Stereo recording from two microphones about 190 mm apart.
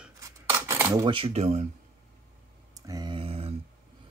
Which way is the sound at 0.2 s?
15° right (ahead or behind).